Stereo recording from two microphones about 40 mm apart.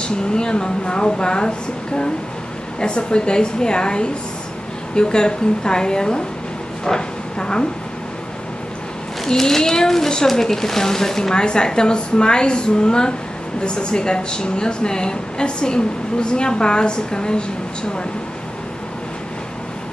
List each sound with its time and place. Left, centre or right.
0.0 s a woman's voice: left
2.8 s a woman's voice: left
9.3 s a woman's voice: centre